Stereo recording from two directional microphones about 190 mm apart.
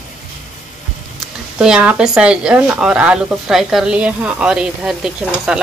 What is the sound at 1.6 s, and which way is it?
Speech, 5° right (ahead or behind).